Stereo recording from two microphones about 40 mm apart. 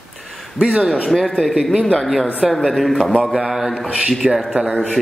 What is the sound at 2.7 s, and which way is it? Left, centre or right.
Speech, centre.